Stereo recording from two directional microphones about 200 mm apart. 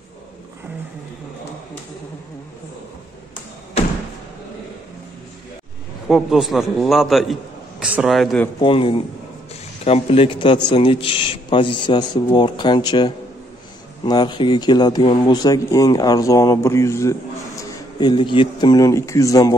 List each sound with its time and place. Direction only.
6.0 s a man's voice: centre (ahead or behind)
8.5 s speech: 25° left (ahead or behind)